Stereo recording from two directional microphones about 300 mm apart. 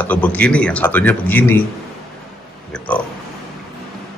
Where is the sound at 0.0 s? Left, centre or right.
Centre.